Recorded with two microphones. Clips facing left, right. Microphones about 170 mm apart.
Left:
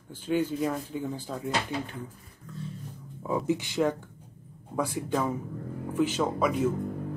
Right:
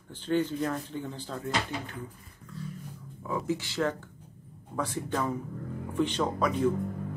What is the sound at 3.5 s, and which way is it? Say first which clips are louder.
Speech: left 3 dB; 15° left (ahead or behind).